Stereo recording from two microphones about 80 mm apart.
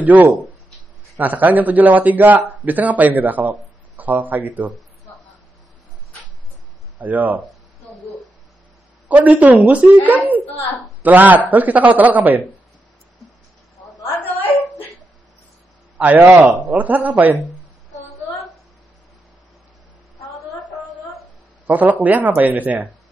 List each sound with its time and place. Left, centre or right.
0.0 s a man's voice: right
7.0 s a man's voice: right
9.1 s a man's voice: centre
16.0 s a man's voice: right
21.6 s a man's voice: right